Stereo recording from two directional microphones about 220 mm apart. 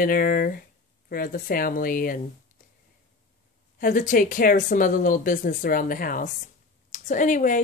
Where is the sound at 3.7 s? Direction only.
35° left (ahead or behind).